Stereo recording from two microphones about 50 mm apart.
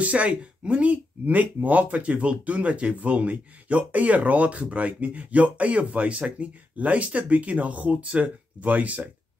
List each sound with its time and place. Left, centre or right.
0.0 s speech: right